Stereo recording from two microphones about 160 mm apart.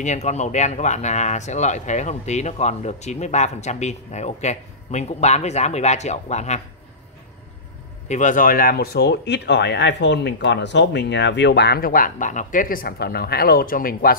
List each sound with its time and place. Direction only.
0.0 s speech: 45° left (ahead or behind)
8.1 s speech: 50° left (ahead or behind)